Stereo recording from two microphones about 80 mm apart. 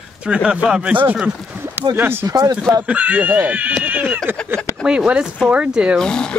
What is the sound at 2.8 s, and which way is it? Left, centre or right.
Speech, centre.